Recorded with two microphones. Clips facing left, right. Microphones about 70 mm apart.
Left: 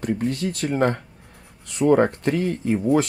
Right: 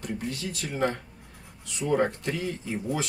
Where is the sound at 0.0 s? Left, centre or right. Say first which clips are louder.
Left 9 dB; left.